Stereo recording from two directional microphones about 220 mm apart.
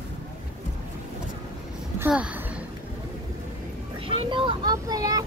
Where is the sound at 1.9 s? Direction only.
5° right (ahead or behind).